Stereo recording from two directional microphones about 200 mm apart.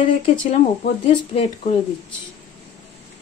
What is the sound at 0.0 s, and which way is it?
Speech, 25° left (ahead or behind).